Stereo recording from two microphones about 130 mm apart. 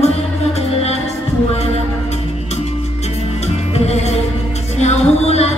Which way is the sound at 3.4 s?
55° left (ahead or behind).